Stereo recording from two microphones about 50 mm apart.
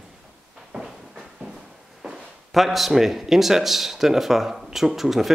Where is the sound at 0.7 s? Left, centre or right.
Centre.